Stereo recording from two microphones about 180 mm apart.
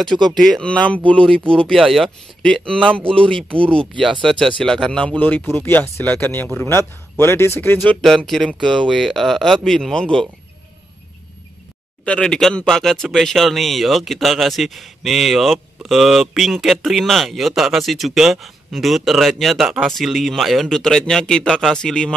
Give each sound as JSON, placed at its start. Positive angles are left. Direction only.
{"t": 0.2, "sound": "speech", "side_deg": 0}
{"t": 3.5, "sound": "speech", "side_deg": -30}
{"t": 4.0, "sound": "speech", "side_deg": 0}
{"t": 12.0, "sound": "speech", "side_deg": 5}